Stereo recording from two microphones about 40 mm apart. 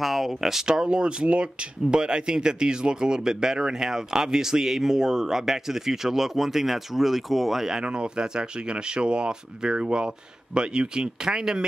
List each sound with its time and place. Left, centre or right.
0.0 s speech: centre
0.8 s speech: right; by 7.8 s centre
7.8 s speech: right